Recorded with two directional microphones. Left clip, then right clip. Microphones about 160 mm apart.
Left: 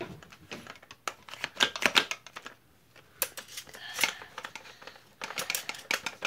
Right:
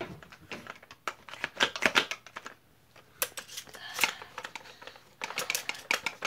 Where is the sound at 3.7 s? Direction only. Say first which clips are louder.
Even; centre (ahead or behind).